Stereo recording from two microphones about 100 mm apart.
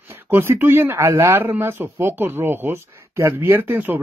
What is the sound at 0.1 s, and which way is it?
A man's voice, 25° right (ahead or behind).